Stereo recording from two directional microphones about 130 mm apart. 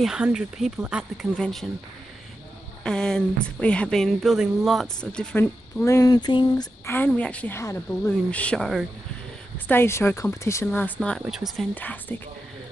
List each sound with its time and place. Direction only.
0.0 s speech: 5° right (ahead or behind)
2.8 s speech: 5° left (ahead or behind); by 6.1 s 20° left (ahead or behind)
6.1 s a sound: 35° left (ahead or behind)
6.9 s a woman's voice: 10° left (ahead or behind)
9.7 s speech: 20° left (ahead or behind)
11.0 s speech: centre (ahead or behind)
11.7 s a woman's voice: 15° left (ahead or behind)